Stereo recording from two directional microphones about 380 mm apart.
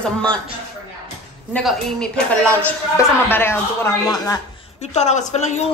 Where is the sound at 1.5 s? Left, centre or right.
Centre.